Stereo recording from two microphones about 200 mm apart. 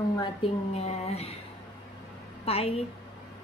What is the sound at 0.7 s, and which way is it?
Speech, 30° left (ahead or behind).